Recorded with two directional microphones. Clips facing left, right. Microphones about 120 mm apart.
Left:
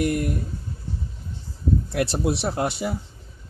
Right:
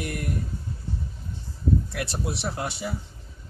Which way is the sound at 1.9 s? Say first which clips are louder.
Left 7 dB; 35° left (ahead or behind).